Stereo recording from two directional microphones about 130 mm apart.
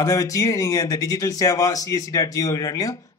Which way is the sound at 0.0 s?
25° left (ahead or behind).